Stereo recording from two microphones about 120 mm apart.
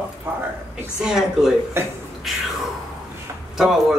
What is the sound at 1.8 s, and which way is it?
Speech, 20° right (ahead or behind).